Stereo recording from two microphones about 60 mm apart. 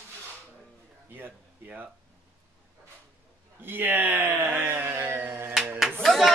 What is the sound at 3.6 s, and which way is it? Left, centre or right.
Speech, right.